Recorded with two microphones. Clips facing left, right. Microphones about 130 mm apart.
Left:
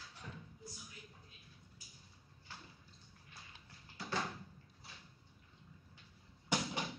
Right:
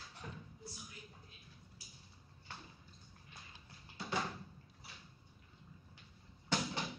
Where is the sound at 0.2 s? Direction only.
50° right (ahead or behind).